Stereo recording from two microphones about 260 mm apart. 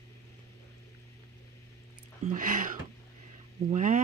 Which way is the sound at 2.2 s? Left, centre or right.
Right.